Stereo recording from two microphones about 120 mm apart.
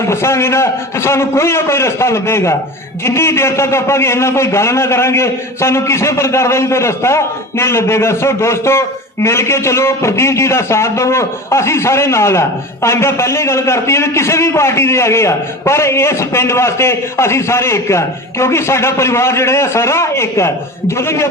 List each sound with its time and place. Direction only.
0.0 s a man's voice: 20° left (ahead or behind)